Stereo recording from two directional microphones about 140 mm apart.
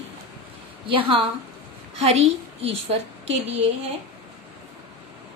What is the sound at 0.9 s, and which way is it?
A woman's voice, 40° right (ahead or behind).